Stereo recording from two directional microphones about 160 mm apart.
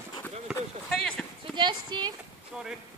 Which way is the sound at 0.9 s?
5° left (ahead or behind).